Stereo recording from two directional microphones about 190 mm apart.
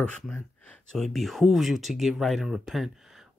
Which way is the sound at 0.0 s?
5° left (ahead or behind).